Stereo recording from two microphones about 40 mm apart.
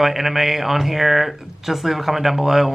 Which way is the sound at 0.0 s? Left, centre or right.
Centre.